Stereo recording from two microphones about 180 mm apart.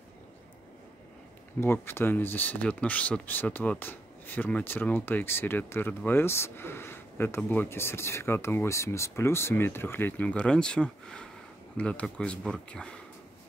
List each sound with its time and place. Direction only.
1.6 s speech: 15° left (ahead or behind)